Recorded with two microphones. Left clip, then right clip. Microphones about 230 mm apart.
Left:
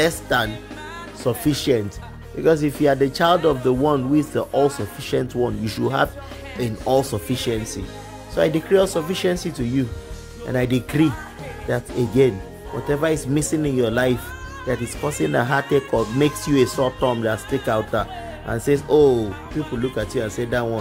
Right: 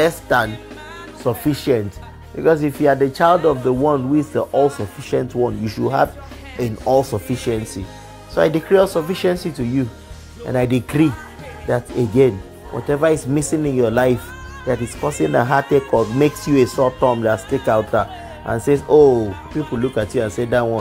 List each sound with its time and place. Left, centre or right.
0.0 s speech: centre